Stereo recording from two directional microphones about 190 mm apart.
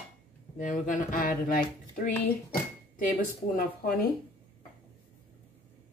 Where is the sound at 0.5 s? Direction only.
45° left (ahead or behind).